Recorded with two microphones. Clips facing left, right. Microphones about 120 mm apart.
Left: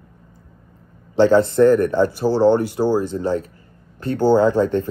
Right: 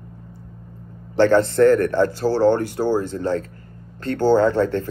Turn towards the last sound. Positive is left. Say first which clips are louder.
# left 2 dB
turn(degrees=15)  # may be behind; listen again after turning